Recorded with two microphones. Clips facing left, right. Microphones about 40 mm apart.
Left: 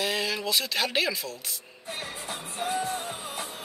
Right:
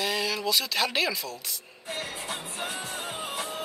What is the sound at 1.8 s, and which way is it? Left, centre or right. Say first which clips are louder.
Music: right 2 dB; right.